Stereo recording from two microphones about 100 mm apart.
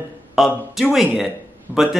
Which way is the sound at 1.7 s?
15° right (ahead or behind).